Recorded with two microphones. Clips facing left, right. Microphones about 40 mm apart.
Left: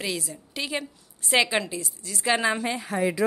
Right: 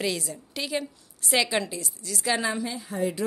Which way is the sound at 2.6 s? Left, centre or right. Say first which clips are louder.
Left 3 dB; left.